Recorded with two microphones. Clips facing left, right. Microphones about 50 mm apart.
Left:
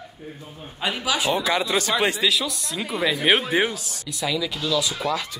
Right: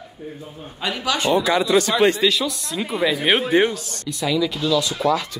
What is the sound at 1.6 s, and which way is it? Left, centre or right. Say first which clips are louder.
Speech: right 6 dB; centre.